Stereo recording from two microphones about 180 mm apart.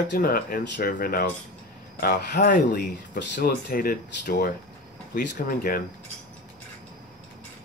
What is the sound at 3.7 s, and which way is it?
Speech, 50° left (ahead or behind).